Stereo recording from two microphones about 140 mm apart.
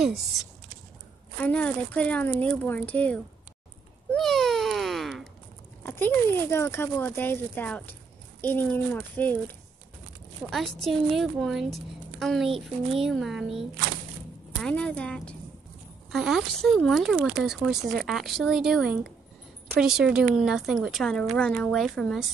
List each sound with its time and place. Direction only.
0.0 s a woman's voice: centre (ahead or behind)
1.4 s speech: 10° left (ahead or behind)
4.1 s a sound: 5° left (ahead or behind)
5.9 s speech: 15° left (ahead or behind)
10.5 s a woman's voice: centre (ahead or behind)